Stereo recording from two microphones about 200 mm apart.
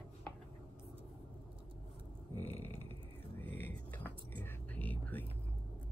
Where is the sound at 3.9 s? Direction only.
10° left (ahead or behind).